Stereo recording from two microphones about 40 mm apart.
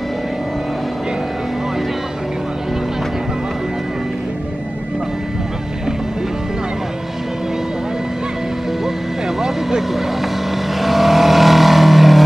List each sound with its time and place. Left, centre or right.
9.4 s vehicle: centre